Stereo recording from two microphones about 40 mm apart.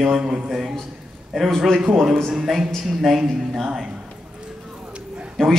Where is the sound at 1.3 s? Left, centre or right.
Centre.